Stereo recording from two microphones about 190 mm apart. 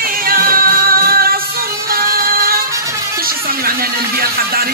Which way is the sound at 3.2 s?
50° right (ahead or behind).